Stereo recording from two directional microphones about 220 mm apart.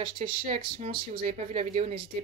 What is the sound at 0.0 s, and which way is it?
Speech, 25° right (ahead or behind).